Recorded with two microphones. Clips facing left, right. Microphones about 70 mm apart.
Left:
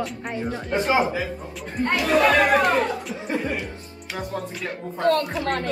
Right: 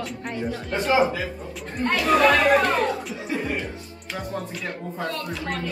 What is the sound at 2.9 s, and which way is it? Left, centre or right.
Speech, centre.